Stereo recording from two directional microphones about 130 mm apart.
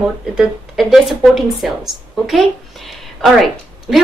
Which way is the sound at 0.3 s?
5° right (ahead or behind).